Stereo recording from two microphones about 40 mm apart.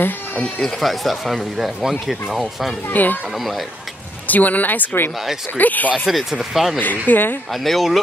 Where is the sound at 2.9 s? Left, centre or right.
Left.